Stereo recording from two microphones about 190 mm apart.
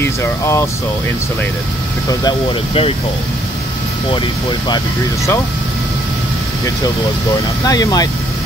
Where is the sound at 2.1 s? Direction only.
20° left (ahead or behind).